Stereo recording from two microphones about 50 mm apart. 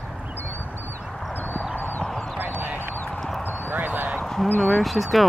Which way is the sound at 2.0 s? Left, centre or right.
Centre.